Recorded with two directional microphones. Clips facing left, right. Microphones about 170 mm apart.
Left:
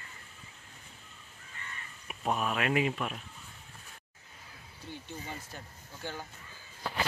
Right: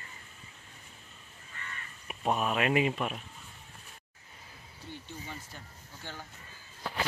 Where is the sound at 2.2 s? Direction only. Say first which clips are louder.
Right 2 dB; 20° right (ahead or behind).